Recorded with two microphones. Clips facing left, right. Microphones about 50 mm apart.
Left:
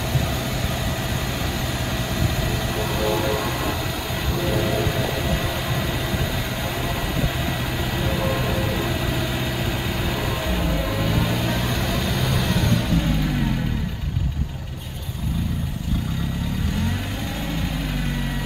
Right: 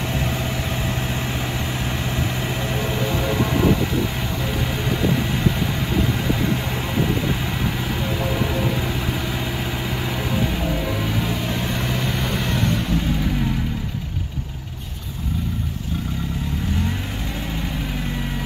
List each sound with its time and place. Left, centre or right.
3.3 s vehicle: centre
5.0 s vehicle: centre
11.1 s vehicle: centre